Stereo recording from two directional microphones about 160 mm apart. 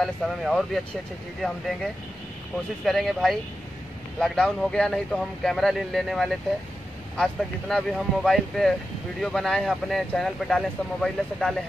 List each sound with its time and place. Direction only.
0.0 s speech: centre (ahead or behind)
2.8 s speech: centre (ahead or behind)